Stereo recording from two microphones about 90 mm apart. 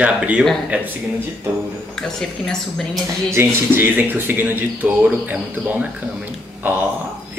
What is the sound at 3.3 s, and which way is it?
Speech, 25° right (ahead or behind).